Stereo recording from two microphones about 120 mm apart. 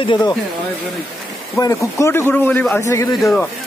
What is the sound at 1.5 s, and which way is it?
A man's voice, 25° left (ahead or behind).